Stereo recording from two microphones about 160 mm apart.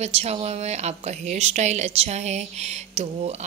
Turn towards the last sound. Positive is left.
turn(degrees=-45)  # may be behind; listen again after turning